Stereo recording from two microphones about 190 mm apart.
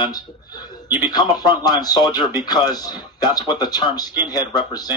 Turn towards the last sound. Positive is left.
turn(degrees=20)  # may be behind; listen again after turning